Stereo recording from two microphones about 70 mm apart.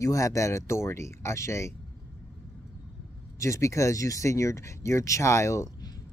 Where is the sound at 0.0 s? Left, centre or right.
Left.